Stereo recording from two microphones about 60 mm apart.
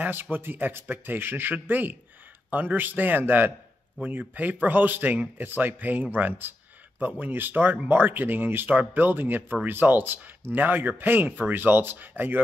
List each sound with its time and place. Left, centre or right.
0.0 s speech: right